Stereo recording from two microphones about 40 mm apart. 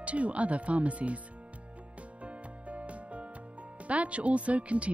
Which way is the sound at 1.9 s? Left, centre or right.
Right.